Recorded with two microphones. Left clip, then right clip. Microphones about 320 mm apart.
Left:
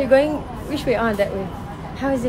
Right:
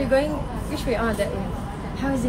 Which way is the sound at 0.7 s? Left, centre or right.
Left.